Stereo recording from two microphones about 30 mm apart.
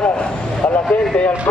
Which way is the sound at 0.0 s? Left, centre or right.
Left.